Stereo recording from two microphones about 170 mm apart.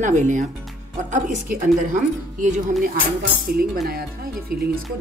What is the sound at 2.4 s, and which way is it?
Speech, 45° right (ahead or behind).